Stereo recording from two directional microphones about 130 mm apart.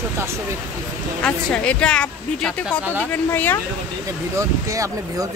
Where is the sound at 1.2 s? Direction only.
10° left (ahead or behind).